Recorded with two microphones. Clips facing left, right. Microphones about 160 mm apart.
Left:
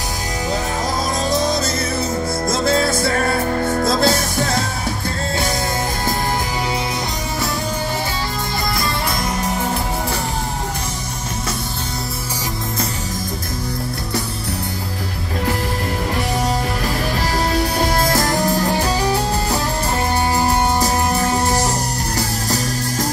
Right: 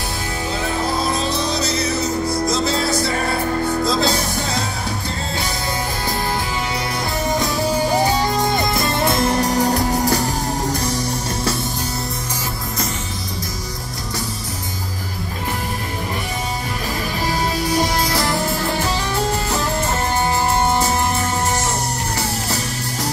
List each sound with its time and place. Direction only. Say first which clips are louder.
1.3 s music: left 2 dB; 45° left (ahead or behind)
8.7 s music: right 4 dB; 25° right (ahead or behind)
18.0 s music: left 2 dB; 45° left (ahead or behind)
20.8 s music: left 2 dB; 35° left (ahead or behind)